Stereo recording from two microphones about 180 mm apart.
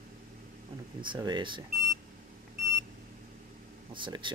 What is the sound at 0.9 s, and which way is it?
Speech, 25° right (ahead or behind).